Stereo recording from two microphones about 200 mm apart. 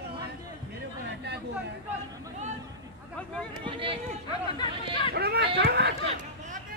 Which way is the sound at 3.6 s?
25° right (ahead or behind).